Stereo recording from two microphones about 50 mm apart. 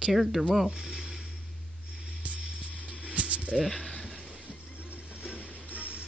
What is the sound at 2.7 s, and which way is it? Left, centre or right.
Music, left.